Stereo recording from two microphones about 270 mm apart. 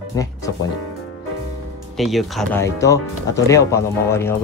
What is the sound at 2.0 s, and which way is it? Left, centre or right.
Speech, centre.